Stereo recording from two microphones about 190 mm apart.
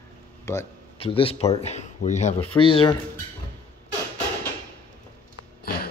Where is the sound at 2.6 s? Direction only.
25° left (ahead or behind).